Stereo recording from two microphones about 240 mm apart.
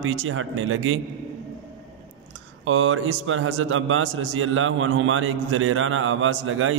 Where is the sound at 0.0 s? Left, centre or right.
Right.